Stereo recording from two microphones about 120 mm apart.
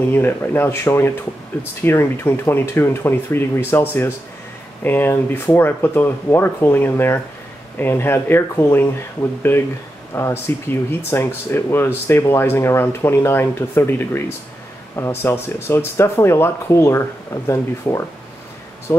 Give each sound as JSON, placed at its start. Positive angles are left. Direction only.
{"t": 0.1, "sound": "speech", "side_deg": 20}
{"t": 4.8, "sound": "speech", "side_deg": 15}